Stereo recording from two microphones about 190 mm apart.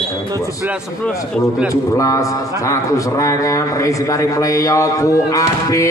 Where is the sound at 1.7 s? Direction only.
15° left (ahead or behind).